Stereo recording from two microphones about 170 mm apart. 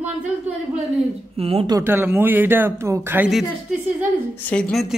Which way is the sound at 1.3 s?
35° right (ahead or behind).